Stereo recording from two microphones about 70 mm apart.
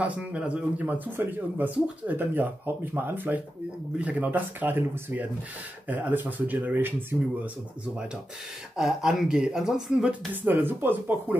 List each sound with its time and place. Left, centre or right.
0.0 s speech: centre
8.7 s speech: centre
10.3 s speech: right